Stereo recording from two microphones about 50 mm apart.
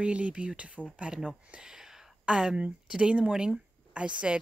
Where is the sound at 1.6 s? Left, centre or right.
Centre.